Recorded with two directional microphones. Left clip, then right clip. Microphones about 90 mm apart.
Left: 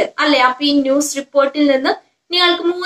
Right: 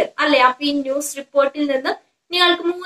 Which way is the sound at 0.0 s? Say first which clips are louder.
Left 1 dB; 35° left (ahead or behind).